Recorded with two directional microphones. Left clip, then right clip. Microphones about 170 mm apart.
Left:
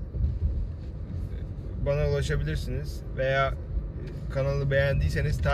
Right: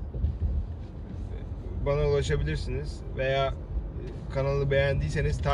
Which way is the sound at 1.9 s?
20° left (ahead or behind).